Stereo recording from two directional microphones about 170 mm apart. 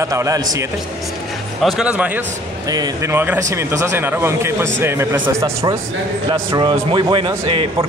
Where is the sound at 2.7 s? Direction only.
20° right (ahead or behind).